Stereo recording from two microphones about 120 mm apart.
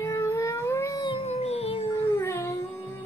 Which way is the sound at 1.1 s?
55° left (ahead or behind).